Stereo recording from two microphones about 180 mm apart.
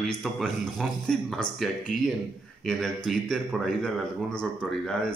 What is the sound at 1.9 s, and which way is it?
Speech, 45° left (ahead or behind).